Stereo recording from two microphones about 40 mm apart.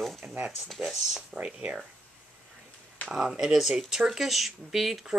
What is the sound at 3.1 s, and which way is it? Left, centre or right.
Speech, centre.